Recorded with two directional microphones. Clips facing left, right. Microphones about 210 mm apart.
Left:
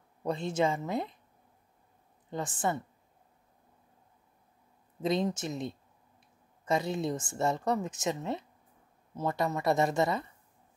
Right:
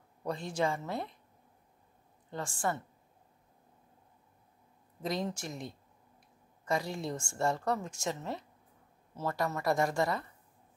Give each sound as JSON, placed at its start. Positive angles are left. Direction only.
{"t": 0.2, "sound": "a woman's voice", "side_deg": 25}
{"t": 2.3, "sound": "a woman's voice", "side_deg": 20}
{"t": 5.0, "sound": "a woman's voice", "side_deg": 20}